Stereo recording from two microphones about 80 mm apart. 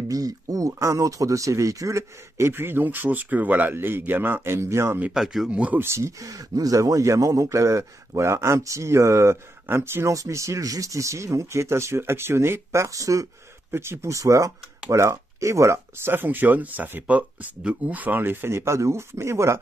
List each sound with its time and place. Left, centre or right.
0.1 s speech: right
5.1 s speech: centre
5.5 s speech: centre
5.8 s speech: right
13.7 s speech: right